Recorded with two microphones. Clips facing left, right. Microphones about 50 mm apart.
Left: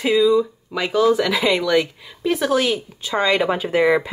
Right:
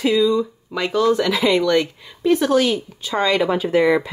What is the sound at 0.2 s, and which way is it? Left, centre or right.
Speech, centre.